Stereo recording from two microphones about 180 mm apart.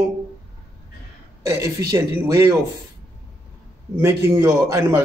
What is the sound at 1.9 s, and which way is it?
Speech, 15° right (ahead or behind).